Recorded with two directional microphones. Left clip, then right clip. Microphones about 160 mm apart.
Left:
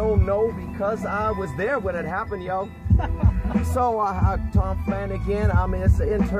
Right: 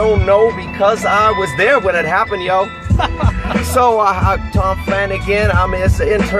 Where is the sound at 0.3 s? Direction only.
35° right (ahead or behind).